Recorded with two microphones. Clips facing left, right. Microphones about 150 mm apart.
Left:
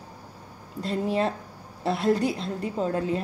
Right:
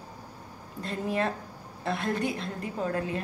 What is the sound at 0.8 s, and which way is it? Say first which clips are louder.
A woman's voice: left 4 dB; 30° left (ahead or behind).